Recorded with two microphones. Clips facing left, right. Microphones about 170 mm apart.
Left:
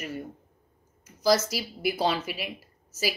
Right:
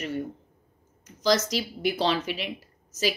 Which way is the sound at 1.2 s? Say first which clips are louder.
Even; 10° left (ahead or behind).